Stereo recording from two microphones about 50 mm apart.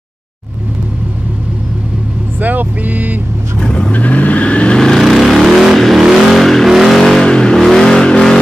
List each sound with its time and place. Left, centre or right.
2.4 s vehicle: right
3.5 s vehicle: centre
3.9 s vehicle: left
4.7 s vehicle: centre
5.0 s vehicle: centre
6.0 s vehicle: centre
6.3 s vehicle: centre
7.0 s vehicle: centre